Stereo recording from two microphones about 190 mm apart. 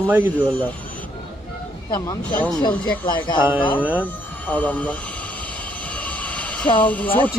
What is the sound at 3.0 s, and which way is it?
Speech, 25° left (ahead or behind).